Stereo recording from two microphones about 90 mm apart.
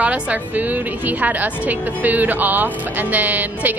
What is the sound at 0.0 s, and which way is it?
A woman's voice, 15° right (ahead or behind).